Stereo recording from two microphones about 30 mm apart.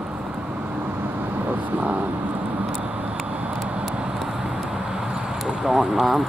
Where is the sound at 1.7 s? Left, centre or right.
Right.